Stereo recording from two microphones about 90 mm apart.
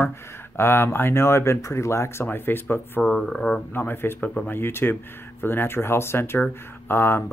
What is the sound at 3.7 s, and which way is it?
Speech, 25° left (ahead or behind).